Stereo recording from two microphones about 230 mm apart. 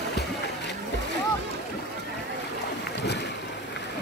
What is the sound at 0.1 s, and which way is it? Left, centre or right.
Boat, left.